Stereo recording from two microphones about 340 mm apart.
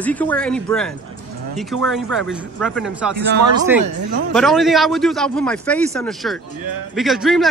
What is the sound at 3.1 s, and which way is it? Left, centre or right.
Speech, right.